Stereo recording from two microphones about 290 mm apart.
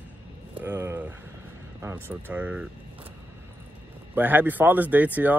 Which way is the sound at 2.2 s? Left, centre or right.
Centre.